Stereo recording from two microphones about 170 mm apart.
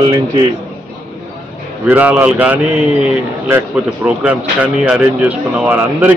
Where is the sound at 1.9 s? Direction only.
10° right (ahead or behind).